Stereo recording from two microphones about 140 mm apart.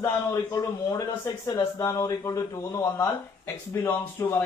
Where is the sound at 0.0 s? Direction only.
20° left (ahead or behind).